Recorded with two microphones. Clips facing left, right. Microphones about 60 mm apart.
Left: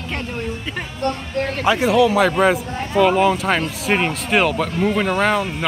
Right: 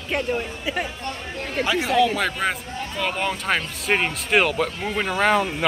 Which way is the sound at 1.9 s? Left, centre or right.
Centre.